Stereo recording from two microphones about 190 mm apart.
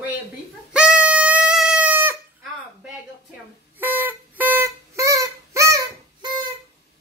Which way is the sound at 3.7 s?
10° right (ahead or behind).